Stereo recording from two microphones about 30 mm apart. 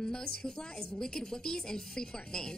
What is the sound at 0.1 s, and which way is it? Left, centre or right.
A woman's voice, left.